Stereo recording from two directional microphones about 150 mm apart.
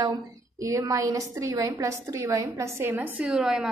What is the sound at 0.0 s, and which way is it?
A woman's voice, 20° right (ahead or behind).